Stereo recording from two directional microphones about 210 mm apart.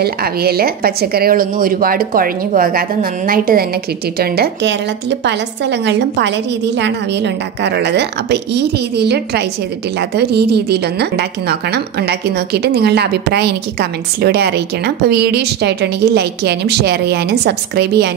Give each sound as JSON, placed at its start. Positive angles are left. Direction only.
{"t": 0.0, "sound": "speech", "side_deg": -45}